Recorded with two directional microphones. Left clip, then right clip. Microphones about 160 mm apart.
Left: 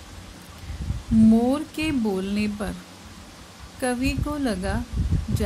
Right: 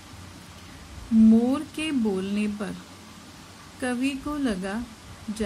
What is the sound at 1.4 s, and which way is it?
Speech, 15° left (ahead or behind).